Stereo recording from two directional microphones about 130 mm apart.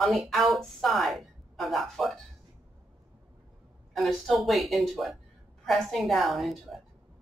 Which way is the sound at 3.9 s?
Centre (ahead or behind).